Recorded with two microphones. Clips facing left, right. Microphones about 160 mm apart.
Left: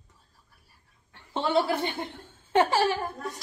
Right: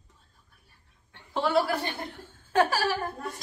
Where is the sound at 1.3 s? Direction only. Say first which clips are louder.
Even; 25° left (ahead or behind).